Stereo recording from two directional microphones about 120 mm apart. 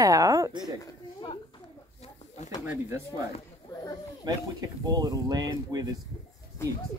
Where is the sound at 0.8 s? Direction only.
35° left (ahead or behind).